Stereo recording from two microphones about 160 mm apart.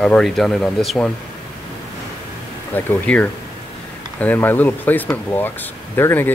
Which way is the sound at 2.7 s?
10° left (ahead or behind).